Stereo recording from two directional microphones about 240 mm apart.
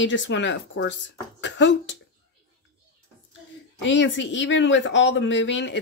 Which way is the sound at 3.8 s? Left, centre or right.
Left.